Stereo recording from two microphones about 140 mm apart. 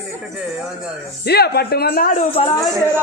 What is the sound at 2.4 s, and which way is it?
Speech, 50° left (ahead or behind).